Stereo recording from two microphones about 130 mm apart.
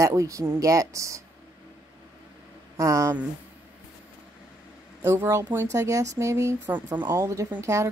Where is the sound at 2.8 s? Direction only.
25° right (ahead or behind).